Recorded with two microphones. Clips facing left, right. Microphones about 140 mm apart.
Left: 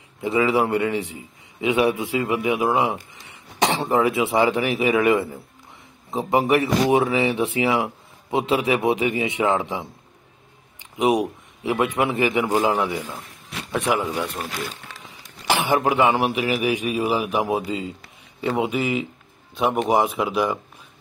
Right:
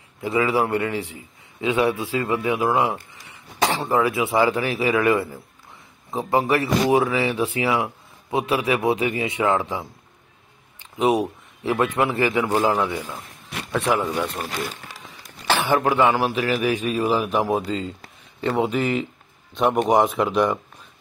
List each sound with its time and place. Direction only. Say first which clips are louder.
0.2 s a man's voice: left 1 dB; 25° left (ahead or behind)
15.4 s a man's voice: even; 15° left (ahead or behind)